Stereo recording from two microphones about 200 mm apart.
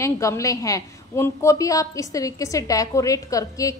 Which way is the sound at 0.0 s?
15° left (ahead or behind).